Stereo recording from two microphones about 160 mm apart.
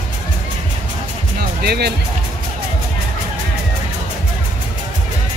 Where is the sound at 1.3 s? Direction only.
85° right.